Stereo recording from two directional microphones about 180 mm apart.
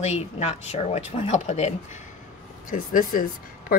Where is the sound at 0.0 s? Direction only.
35° left (ahead or behind).